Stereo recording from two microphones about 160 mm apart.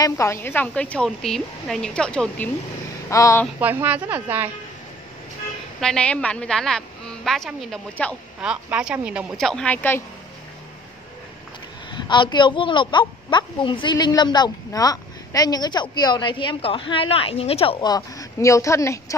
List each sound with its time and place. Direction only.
0.0 s a woman's voice: 20° left (ahead or behind)
3.1 s a woman's voice: 20° left (ahead or behind)
3.5 s a woman's voice: 10° right (ahead or behind)
5.8 s a woman's voice: 5° left (ahead or behind)
8.4 s a woman's voice: 5° right (ahead or behind); by 10.0 s 10° left (ahead or behind)
11.9 s a woman's voice: 30° left (ahead or behind)